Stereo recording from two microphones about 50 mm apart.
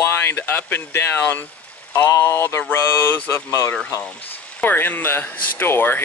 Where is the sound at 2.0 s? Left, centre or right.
Left.